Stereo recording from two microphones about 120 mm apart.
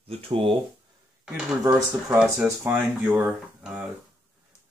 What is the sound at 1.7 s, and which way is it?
Coin, 30° right (ahead or behind).